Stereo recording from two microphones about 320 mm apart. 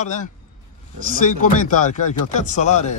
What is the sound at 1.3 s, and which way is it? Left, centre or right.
Speech, left.